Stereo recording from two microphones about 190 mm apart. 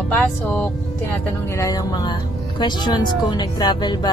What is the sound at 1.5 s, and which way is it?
Speech, 20° left (ahead or behind).